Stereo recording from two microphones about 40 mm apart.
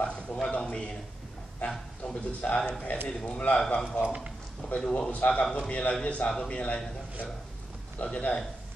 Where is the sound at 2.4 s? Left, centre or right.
Left.